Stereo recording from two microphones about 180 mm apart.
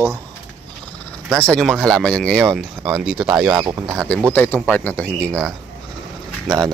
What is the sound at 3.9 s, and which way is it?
Speech, centre (ahead or behind).